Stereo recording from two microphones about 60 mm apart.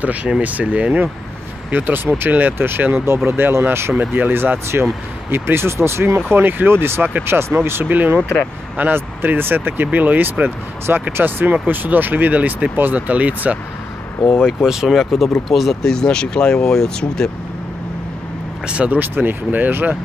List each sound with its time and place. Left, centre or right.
0.0 s speech: right
14.4 s speech: centre
15.9 s speech: centre
18.9 s speech: right